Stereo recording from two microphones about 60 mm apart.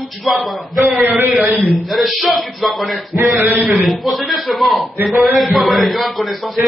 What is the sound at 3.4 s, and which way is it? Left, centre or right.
Speech, right.